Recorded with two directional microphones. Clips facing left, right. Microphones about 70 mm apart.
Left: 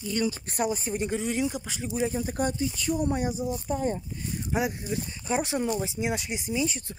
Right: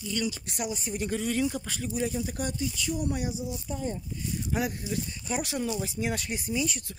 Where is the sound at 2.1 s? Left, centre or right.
Left.